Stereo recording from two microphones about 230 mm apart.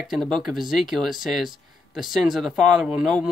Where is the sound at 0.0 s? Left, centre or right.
Centre.